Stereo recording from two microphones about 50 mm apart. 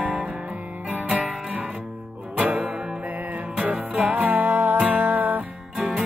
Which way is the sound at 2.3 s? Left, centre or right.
Right.